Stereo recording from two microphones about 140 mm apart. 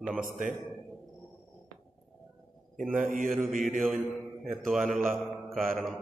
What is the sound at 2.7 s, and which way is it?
Speech, 70° right (ahead or behind).